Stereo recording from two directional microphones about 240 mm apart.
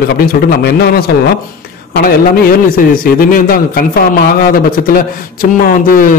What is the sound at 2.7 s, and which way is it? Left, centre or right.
A man's voice, left.